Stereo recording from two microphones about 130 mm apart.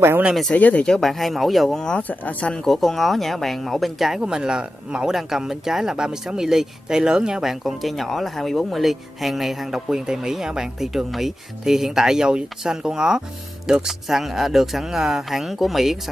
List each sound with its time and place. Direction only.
0.0 s speech: 15° right (ahead or behind)
0.3 s speech: centre (ahead or behind)